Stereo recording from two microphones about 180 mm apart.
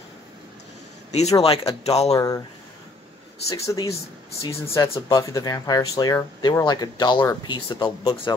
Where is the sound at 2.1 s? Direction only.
20° left (ahead or behind).